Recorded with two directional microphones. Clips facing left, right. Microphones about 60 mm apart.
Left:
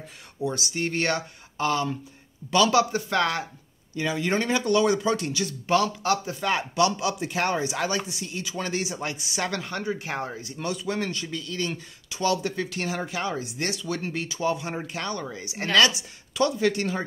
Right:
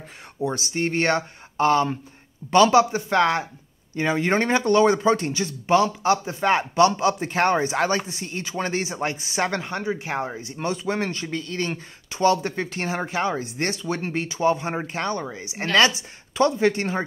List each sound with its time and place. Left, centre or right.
0.4 s a man's voice: right
3.9 s a man's voice: right